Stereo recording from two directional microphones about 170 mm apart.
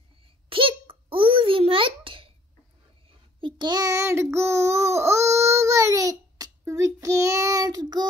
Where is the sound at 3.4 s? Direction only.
25° right (ahead or behind).